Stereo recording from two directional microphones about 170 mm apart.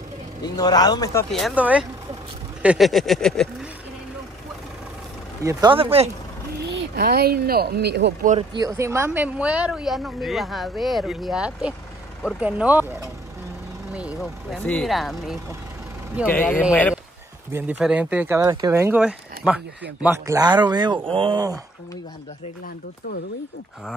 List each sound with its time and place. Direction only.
0.4 s speech: 25° left (ahead or behind)
1.3 s speech: 5° right (ahead or behind)
5.4 s speech: 20° right (ahead or behind)
5.7 s speech: 35° right (ahead or behind)
6.7 s speech: 65° right (ahead or behind)
8.4 s speech: 20° right (ahead or behind); by 15.3 s centre (ahead or behind)
16.3 s speech: 10° left (ahead or behind)
17.5 s speech: 10° right (ahead or behind)